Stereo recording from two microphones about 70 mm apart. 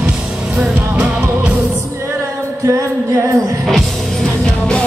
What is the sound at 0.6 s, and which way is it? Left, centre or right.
Music, centre.